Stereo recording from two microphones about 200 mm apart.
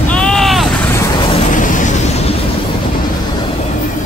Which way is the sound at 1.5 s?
40° left (ahead or behind).